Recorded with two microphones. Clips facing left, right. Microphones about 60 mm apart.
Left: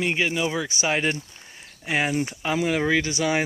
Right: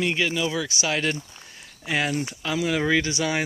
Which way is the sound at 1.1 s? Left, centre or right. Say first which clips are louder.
Even; centre.